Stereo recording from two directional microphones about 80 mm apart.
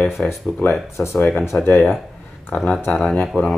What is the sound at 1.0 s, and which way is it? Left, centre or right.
Speech, left.